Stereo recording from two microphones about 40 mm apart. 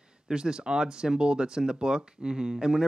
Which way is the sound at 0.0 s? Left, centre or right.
Right.